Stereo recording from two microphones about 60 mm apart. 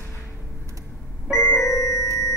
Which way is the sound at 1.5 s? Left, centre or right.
Left.